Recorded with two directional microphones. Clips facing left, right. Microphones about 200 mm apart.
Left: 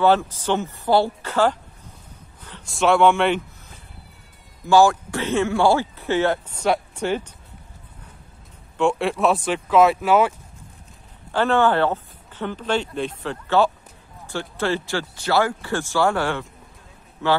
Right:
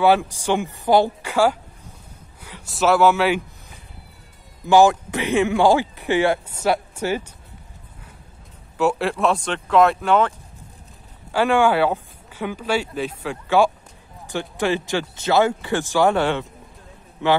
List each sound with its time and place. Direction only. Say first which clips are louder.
0.0 s a man's voice: right 1 dB; 10° right (ahead or behind)
4.6 s speech: right 1 dB; 15° right (ahead or behind)
8.7 s speech: even; 5° right (ahead or behind)
11.3 s speech: right 1 dB; 10° right (ahead or behind)